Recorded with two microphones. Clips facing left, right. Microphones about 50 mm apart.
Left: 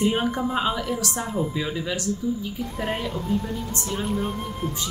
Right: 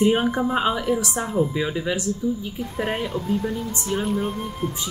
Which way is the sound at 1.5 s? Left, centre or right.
Centre.